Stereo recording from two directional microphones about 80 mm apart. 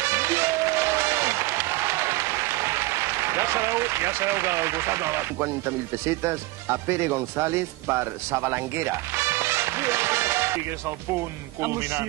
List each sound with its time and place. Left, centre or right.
0.0 s music: right
11.6 s a man's voice: right